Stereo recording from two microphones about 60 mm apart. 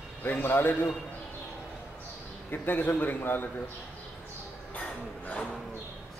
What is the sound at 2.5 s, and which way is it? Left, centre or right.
Speech, left.